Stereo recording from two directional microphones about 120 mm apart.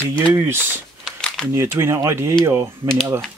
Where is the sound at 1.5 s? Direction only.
20° right (ahead or behind).